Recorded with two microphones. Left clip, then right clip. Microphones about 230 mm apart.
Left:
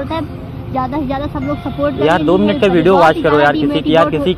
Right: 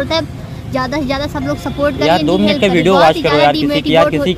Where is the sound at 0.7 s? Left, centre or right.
Right.